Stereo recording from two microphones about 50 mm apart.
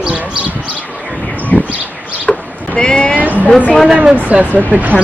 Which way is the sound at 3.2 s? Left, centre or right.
Right.